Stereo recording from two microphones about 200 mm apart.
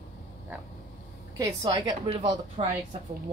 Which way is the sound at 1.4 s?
20° right (ahead or behind).